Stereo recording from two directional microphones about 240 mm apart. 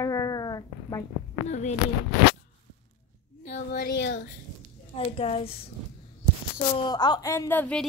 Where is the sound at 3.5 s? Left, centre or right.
Left.